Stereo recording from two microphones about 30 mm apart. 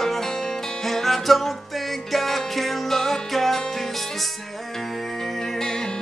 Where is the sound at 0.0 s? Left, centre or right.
Centre.